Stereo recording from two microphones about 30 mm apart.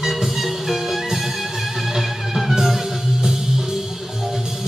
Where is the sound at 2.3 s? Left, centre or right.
Centre.